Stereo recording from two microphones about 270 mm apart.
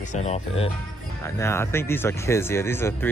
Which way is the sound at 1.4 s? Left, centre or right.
Centre.